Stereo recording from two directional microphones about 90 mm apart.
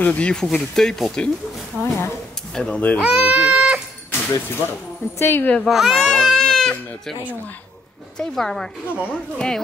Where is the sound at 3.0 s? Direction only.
15° right (ahead or behind).